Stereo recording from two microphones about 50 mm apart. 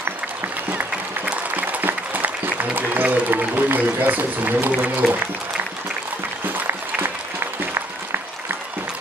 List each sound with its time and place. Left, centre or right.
0.7 s applause: right
3.3 s a man's voice: right
6.5 s applause: right